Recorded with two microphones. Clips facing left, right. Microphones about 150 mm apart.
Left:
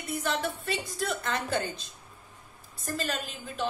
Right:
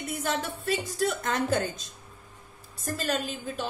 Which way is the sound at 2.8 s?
45° right (ahead or behind).